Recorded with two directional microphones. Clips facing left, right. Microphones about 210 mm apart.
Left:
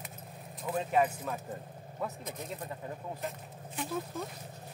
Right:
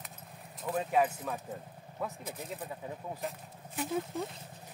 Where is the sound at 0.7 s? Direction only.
Centre (ahead or behind).